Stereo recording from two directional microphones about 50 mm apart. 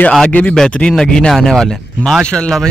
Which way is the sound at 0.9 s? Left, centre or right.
Centre.